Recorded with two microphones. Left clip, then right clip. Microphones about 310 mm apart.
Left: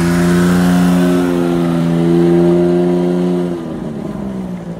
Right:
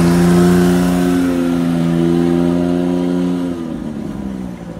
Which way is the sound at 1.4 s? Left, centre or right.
Left.